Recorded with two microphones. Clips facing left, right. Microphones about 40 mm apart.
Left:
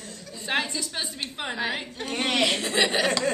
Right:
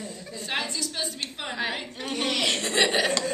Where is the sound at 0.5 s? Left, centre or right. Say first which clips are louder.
Left 3 dB; centre.